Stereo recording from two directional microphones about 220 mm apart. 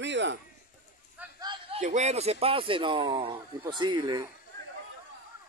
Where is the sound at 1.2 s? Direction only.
20° right (ahead or behind).